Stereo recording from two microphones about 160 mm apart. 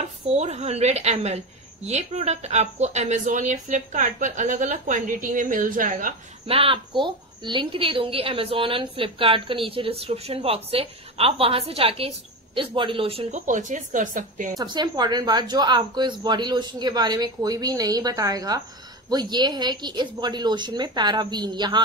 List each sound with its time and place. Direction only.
0.3 s speech: 40° right (ahead or behind); by 6.1 s 60° right (ahead or behind)
6.4 s a woman's voice: 35° right (ahead or behind)
13.5 s speech: 50° right (ahead or behind)
14.6 s speech: 25° right (ahead or behind)